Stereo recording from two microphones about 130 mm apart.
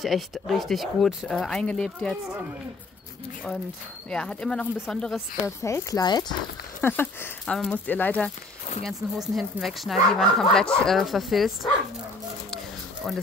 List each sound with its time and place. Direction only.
0.0 s speech: centre (ahead or behind)
4.1 s speech: 5° left (ahead or behind)
5.6 s speech: 25° left (ahead or behind)
6.8 s speech: 15° left (ahead or behind)
8.8 s speech: centre (ahead or behind)
13.0 s speech: 5° left (ahead or behind)